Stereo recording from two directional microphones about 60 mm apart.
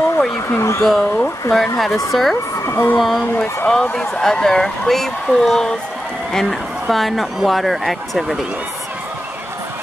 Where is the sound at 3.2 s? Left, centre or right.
Left.